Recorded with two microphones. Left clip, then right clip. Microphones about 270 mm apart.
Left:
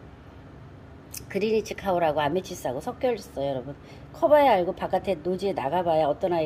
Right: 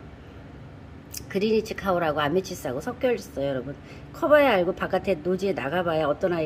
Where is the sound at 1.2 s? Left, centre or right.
Centre.